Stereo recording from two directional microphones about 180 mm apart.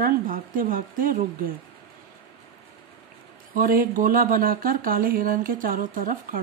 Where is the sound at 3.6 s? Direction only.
50° right (ahead or behind).